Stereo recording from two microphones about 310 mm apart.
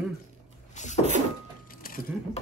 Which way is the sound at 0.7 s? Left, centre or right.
Left.